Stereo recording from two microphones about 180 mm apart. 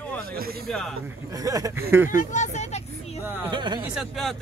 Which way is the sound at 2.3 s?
40° left (ahead or behind).